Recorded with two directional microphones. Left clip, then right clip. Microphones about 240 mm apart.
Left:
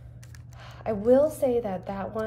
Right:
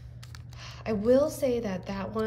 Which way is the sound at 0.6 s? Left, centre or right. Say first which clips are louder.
Left 2 dB; centre.